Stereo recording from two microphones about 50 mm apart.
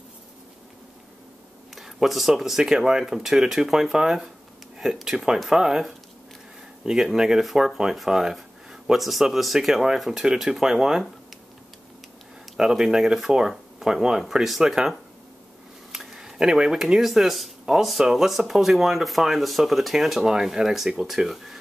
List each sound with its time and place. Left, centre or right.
1.8 s speech: centre
12.5 s speech: centre